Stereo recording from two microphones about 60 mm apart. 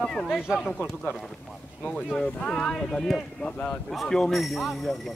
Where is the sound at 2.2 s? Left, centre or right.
Centre.